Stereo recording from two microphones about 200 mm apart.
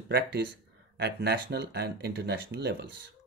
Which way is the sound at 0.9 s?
55° right (ahead or behind).